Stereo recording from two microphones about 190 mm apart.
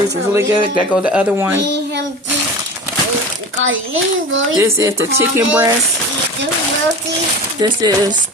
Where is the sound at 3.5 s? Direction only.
90° right.